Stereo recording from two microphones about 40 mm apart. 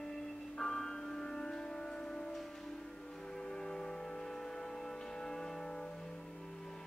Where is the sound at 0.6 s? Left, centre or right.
Centre.